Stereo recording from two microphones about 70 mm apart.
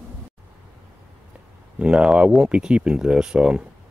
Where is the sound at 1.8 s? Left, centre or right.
Centre.